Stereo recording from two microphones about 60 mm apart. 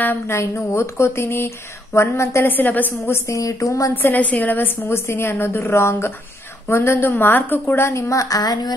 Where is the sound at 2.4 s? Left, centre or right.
Left.